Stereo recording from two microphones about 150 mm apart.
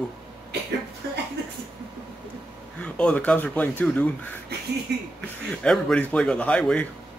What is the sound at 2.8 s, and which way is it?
Speech, 10° left (ahead or behind).